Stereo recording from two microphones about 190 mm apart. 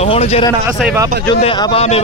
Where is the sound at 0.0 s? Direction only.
35° left (ahead or behind).